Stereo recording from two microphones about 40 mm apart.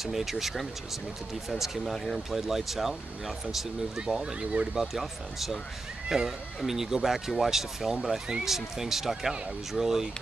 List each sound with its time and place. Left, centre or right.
0.0 s speech: centre
4.2 s speech: right
4.7 s speech: centre